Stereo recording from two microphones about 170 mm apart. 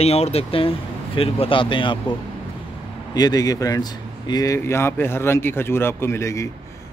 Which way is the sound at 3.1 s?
20° left (ahead or behind).